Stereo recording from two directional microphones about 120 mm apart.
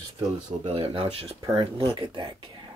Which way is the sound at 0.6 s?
50° right (ahead or behind).